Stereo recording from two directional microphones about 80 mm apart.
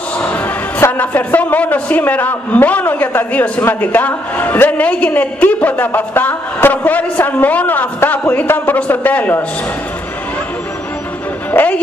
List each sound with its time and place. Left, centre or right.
0.2 s a man's voice: left
11.5 s speech: centre